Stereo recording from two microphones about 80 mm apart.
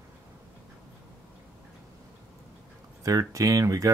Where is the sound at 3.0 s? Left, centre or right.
Right.